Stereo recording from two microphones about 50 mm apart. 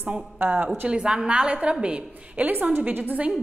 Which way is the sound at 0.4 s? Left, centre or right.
Right.